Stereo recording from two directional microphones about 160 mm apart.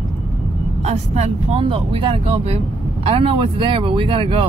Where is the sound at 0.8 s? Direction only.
40° right (ahead or behind).